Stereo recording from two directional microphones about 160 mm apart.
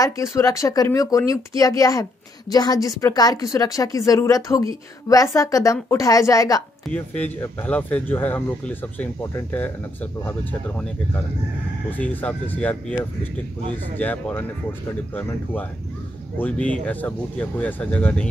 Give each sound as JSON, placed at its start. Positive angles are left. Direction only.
{"t": 0.0, "sound": "speech", "side_deg": 20}
{"t": 6.9, "sound": "speech", "side_deg": 10}
{"t": 12.0, "sound": "speech", "side_deg": 10}
{"t": 13.9, "sound": "speech", "side_deg": 10}